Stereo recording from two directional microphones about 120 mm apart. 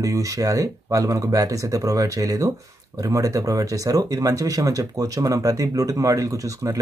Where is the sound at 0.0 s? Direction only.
30° right (ahead or behind).